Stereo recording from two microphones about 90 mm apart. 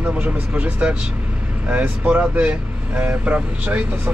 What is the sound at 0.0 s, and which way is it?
Speech, 15° right (ahead or behind).